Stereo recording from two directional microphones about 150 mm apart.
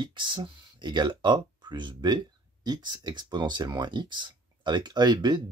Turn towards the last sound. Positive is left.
turn(degrees=-30)  # may be behind; listen again after turning